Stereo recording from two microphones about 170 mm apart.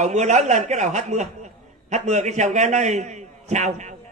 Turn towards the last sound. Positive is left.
turn(degrees=-45)  # may be behind; listen again after turning